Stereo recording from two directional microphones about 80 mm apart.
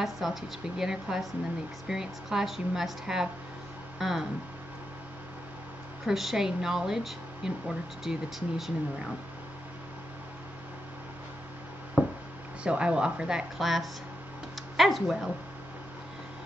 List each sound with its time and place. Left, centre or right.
0.0 s speech: centre
6.0 s speech: centre
12.0 s a sound: right
12.6 s a woman's voice: centre